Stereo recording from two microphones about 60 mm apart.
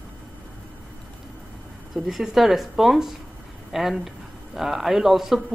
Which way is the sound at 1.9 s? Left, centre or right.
Centre.